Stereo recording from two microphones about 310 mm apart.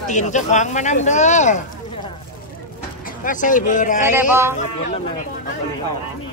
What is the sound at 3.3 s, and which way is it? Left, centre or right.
Speech, left.